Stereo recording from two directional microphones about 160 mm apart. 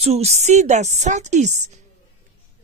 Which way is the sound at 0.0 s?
40° right (ahead or behind).